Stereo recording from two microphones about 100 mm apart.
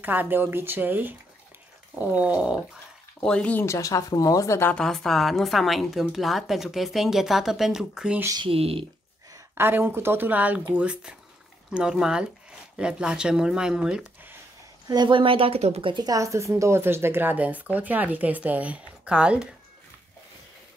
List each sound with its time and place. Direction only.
0.0 s speech: 20° right (ahead or behind)
3.2 s speech: 10° left (ahead or behind)
3.6 s speech: 30° left (ahead or behind)
4.7 s speech: 5° left (ahead or behind)
8.5 s speech: 70° right (ahead or behind)
9.6 s speech: 20° right (ahead or behind)
14.9 s speech: 50° right (ahead or behind); by 15.9 s 85° right
15.9 s speech: 40° right (ahead or behind); by 19.5 s 10° right (ahead or behind)